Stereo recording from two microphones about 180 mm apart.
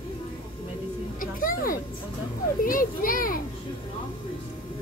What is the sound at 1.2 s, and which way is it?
A woman's voice, 50° left (ahead or behind).